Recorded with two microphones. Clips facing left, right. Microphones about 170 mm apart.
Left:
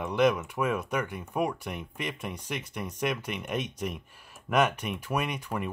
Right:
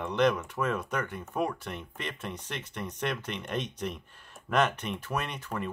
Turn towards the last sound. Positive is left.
turn(degrees=10)  # may be behind; listen again after turning